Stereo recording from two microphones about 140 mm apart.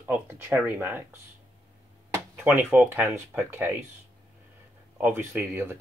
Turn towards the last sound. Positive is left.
turn(degrees=-15)  # may be behind; listen again after turning